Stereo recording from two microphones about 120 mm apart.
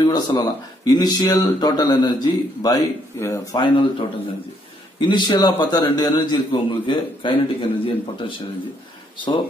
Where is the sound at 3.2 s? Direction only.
25° left (ahead or behind).